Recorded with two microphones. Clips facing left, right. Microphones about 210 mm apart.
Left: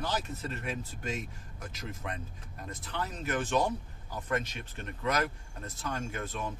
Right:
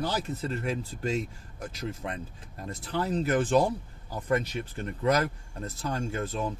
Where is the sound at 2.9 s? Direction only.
35° right (ahead or behind).